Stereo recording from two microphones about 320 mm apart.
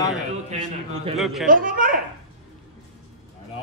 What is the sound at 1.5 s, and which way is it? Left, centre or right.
Speech, right.